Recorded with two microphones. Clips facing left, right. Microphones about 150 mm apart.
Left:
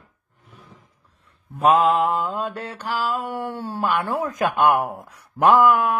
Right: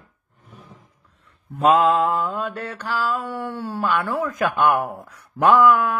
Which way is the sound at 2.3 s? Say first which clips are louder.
Even; 15° left (ahead or behind).